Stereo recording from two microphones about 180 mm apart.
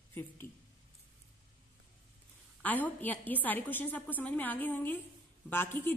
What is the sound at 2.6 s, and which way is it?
A woman's voice, 10° left (ahead or behind).